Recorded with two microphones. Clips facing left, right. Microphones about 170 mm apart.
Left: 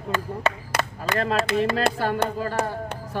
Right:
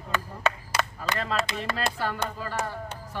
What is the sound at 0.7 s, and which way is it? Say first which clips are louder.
Clapping: left 3 dB; 55° left (ahead or behind).